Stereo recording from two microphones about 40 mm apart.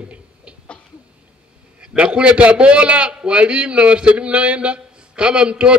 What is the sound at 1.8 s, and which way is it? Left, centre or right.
A man's voice, right.